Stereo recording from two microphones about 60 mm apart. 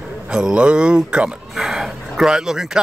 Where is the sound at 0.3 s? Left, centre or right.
Centre.